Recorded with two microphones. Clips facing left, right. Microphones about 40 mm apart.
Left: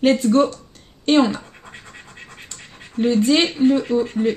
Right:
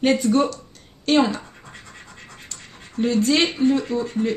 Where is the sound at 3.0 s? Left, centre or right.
Left.